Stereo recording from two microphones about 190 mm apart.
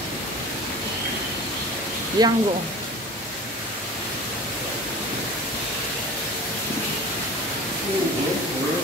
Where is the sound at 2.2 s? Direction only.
20° right (ahead or behind).